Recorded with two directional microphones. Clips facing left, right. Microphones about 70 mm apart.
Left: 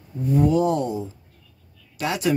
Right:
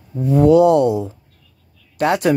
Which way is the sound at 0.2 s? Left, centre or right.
Right.